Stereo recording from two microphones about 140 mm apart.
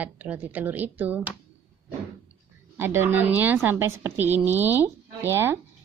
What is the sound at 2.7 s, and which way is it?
A woman's voice, 15° right (ahead or behind).